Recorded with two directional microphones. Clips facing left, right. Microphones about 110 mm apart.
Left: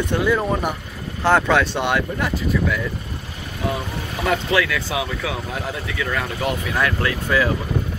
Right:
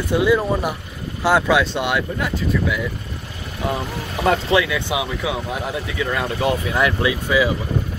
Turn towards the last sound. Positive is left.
turn(degrees=-10)  # may be behind; listen again after turning